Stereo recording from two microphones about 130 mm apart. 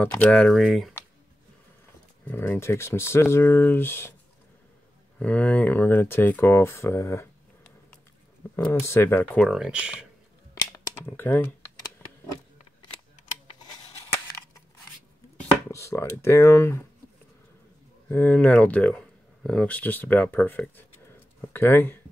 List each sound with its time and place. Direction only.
0.2 s speech: 10° left (ahead or behind)
2.2 s speech: 15° left (ahead or behind)
5.2 s speech: 10° left (ahead or behind)
9.5 s speech: 5° right (ahead or behind)
10.6 s a sound: 25° left (ahead or behind)
15.7 s speech: 20° left (ahead or behind)
18.0 s speech: 15° left (ahead or behind)